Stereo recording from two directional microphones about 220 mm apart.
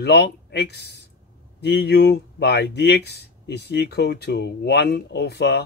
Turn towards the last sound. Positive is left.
turn(degrees=50)  # may be behind; listen again after turning